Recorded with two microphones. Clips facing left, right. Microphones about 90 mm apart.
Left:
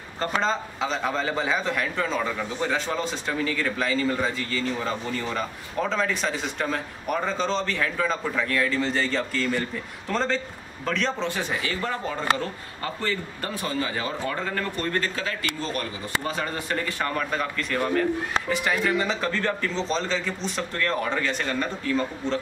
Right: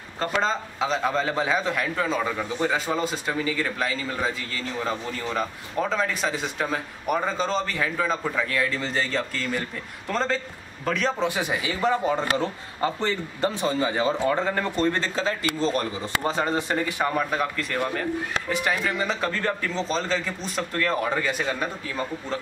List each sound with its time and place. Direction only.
0.2 s a man's voice: centre (ahead or behind)